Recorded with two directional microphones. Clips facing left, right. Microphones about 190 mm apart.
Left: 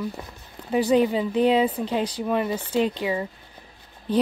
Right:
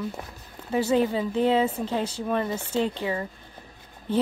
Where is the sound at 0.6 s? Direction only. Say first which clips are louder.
Left 3 dB; 15° left (ahead or behind).